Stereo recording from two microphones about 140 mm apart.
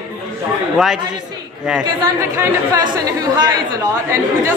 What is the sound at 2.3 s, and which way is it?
Speech, 25° right (ahead or behind).